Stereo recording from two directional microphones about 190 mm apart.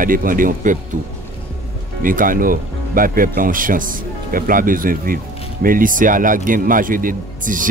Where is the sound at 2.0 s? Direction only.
45° right (ahead or behind).